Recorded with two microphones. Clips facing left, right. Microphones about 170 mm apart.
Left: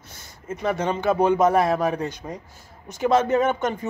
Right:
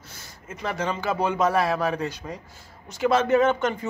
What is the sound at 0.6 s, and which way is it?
Speech, 25° left (ahead or behind).